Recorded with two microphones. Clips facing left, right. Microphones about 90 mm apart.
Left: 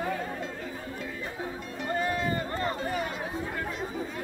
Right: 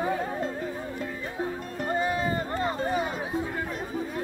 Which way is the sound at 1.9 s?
20° right (ahead or behind).